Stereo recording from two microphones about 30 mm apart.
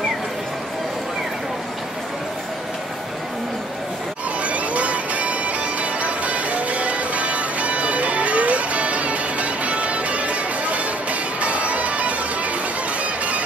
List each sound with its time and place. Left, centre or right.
4.4 s music: right